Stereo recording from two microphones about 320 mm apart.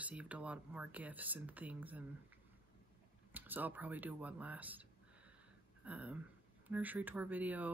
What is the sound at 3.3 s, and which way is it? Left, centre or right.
Speech, centre.